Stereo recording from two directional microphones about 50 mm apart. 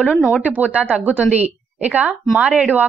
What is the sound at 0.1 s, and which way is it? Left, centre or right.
Speech, centre.